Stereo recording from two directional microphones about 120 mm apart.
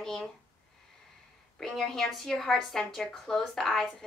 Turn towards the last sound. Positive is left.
turn(degrees=0)  # may be behind; listen again after turning